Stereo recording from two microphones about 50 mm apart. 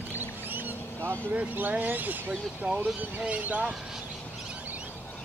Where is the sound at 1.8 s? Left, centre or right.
Right.